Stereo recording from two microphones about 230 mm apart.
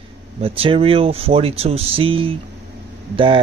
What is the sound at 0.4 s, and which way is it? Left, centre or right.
Speech, right.